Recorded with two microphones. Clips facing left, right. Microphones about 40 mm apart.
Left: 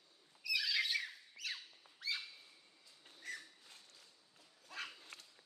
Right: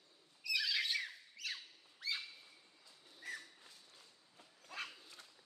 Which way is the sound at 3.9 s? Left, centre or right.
Right.